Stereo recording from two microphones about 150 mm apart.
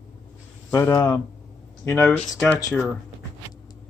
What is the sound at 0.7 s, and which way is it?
Speech, 20° left (ahead or behind).